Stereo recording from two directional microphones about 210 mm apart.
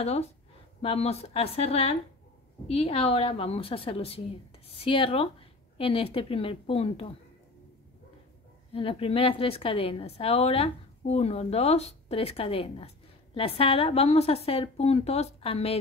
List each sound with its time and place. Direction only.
0.0 s a woman's voice: 30° left (ahead or behind)
8.7 s a woman's voice: 25° left (ahead or behind)